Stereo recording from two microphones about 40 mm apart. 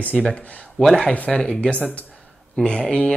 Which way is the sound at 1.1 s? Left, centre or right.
Left.